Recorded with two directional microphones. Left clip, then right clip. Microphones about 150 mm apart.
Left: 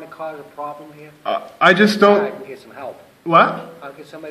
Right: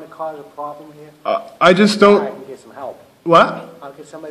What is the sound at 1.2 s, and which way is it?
Speech, 75° right (ahead or behind).